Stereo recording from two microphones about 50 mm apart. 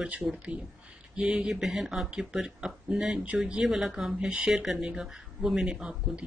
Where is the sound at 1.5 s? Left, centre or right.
Centre.